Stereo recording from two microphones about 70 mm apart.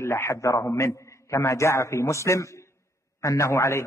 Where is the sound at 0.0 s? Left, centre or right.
Left.